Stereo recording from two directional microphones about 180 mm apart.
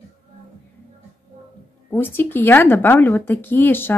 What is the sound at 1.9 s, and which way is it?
Speech, 10° left (ahead or behind).